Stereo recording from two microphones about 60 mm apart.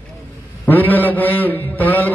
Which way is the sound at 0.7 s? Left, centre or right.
Left.